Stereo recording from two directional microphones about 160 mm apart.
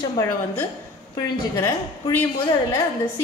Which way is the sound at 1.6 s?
15° left (ahead or behind).